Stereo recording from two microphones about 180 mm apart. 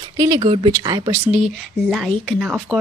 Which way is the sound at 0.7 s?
20° right (ahead or behind).